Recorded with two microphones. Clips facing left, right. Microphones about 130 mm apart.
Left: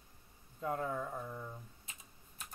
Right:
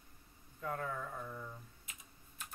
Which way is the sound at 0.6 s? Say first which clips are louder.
Left 3 dB; 25° left (ahead or behind).